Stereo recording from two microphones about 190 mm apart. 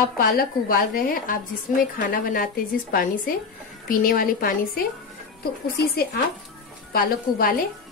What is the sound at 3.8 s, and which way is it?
Speech, 50° left (ahead or behind).